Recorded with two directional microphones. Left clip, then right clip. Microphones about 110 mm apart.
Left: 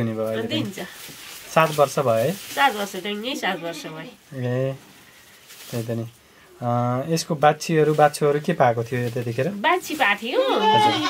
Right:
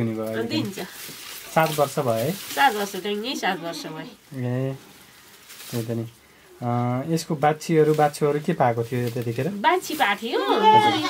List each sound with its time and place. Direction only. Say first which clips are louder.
0.0 s a sound: left 2 dB; 25° left (ahead or behind)
0.3 s speech: left 1 dB; 5° right (ahead or behind)
1.5 s speech: left 3 dB; 30° left (ahead or behind)
2.5 s speech: right 2 dB; 5° right (ahead or behind)
4.4 s speech: left 4 dB; 30° left (ahead or behind)
6.6 s speech: left 3 dB; 30° left (ahead or behind)
9.6 s speech: right 1 dB; 5° right (ahead or behind)